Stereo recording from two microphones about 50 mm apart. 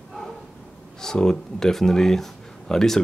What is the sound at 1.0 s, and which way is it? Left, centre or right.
Speech, centre.